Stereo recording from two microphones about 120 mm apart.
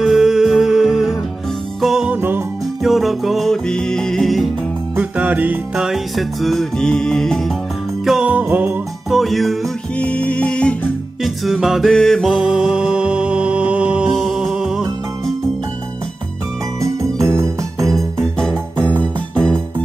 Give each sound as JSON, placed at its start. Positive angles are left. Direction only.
{"t": 0.0, "sound": "music", "side_deg": -5}
{"t": 2.1, "sound": "music", "side_deg": -15}
{"t": 2.8, "sound": "music", "side_deg": 0}
{"t": 4.9, "sound": "music", "side_deg": -15}
{"t": 5.9, "sound": "music", "side_deg": 0}
{"t": 8.0, "sound": "jingle bell", "side_deg": -5}
{"t": 9.1, "sound": "music", "side_deg": 0}
{"t": 9.9, "sound": "music", "side_deg": 10}
{"t": 11.2, "sound": "music", "side_deg": -5}
{"t": 16.8, "sound": "music", "side_deg": -25}
{"t": 18.2, "sound": "music", "side_deg": 5}